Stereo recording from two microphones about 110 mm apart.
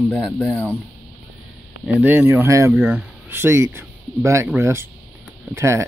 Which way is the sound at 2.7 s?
10° right (ahead or behind).